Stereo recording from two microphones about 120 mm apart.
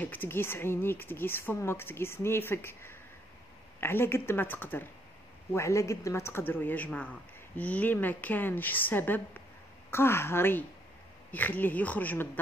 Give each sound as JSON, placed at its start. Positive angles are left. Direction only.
{"t": 0.0, "sound": "a woman's voice", "side_deg": 15}